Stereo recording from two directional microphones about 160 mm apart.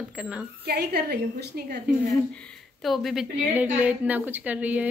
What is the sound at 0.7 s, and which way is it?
A woman's voice, 80° right.